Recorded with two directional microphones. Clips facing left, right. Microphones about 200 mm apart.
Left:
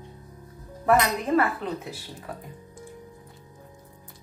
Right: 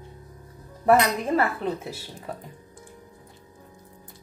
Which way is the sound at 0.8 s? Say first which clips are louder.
Right 2 dB; 30° right (ahead or behind).